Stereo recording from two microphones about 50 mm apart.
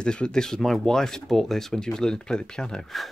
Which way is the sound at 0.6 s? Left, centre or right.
Centre.